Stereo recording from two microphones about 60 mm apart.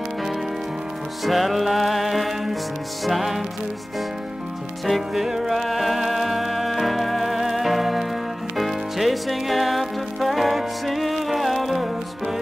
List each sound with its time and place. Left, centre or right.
1.2 s music: centre
4.8 s music: centre